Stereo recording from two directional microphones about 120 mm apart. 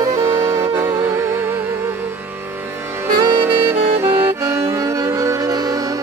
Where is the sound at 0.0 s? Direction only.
30° right (ahead or behind).